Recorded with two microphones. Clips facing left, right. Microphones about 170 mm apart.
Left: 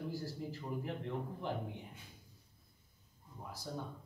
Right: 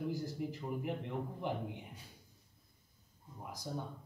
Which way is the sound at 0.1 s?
20° right (ahead or behind).